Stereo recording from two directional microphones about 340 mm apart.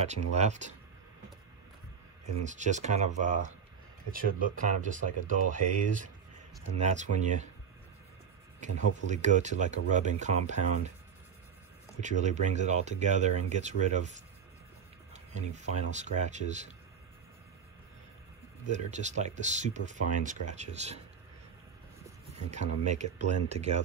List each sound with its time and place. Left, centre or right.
0.0 s speech: centre
2.4 s speech: right
8.6 s speech: right
12.0 s speech: right
15.3 s speech: right
18.7 s speech: right
22.5 s speech: right